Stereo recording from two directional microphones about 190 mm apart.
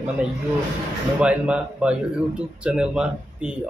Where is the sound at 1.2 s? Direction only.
5° right (ahead or behind).